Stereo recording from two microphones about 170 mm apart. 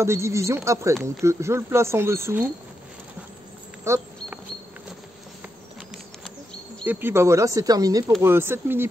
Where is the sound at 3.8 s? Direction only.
15° right (ahead or behind).